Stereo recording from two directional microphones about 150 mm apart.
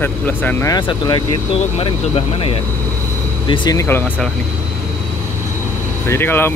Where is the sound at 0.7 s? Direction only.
30° left (ahead or behind).